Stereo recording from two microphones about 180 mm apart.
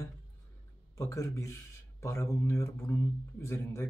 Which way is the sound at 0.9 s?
20° left (ahead or behind).